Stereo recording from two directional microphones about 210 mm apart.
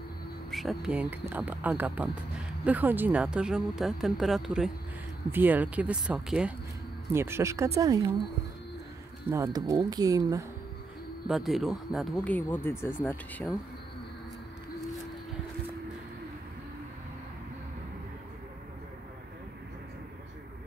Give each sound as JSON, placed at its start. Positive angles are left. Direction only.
{"t": 0.5, "sound": "speech", "side_deg": 0}
{"t": 9.3, "sound": "speech", "side_deg": -15}
{"t": 11.2, "sound": "speech", "side_deg": 0}